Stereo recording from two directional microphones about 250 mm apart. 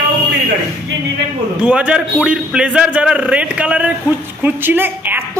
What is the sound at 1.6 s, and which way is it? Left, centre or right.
A woman's voice, centre.